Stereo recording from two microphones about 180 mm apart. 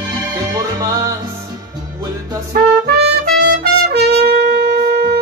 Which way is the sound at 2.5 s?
65° right (ahead or behind).